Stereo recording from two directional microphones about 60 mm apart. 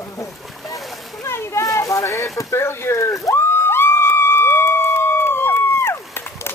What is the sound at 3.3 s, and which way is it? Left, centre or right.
Music, left.